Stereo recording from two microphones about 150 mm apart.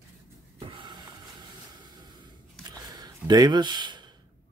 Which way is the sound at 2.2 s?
30° right (ahead or behind).